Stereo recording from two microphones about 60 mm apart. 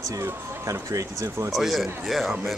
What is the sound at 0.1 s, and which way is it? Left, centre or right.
Speech, right.